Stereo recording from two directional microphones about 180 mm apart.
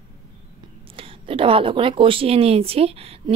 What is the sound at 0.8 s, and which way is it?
A woman's voice, 30° right (ahead or behind).